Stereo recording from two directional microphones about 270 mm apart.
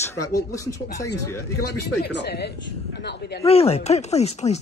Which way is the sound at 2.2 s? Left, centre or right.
Left.